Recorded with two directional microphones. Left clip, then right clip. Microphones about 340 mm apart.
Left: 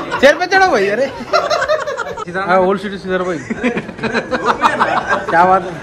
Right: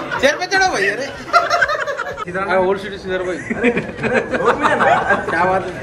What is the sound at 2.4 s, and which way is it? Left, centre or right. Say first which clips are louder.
Speech: left 4 dB; left.